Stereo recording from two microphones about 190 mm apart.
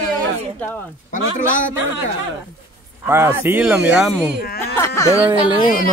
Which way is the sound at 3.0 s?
15° right (ahead or behind).